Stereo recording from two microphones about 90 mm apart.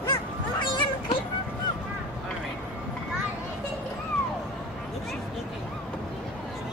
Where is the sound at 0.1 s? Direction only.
60° left (ahead or behind).